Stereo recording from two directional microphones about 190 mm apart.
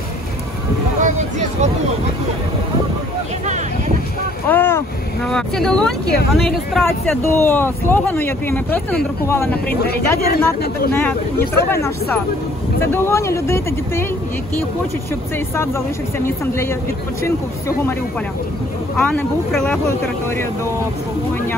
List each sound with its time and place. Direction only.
4.5 s speech: 10° left (ahead or behind)
7.2 s speech: 10° left (ahead or behind)
9.7 s speech: 55° left (ahead or behind)
10.9 s speech: 10° left (ahead or behind)
15.3 s speech: 15° left (ahead or behind)
18.9 s speech: 10° left (ahead or behind)